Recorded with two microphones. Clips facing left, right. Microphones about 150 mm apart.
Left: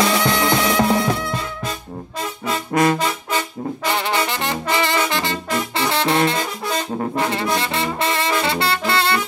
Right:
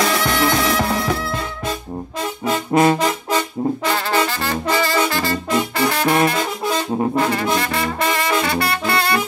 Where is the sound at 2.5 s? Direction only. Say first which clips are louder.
Right 3 dB; 25° right (ahead or behind).